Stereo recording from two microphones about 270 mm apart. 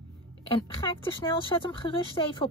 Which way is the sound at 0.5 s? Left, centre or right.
Centre.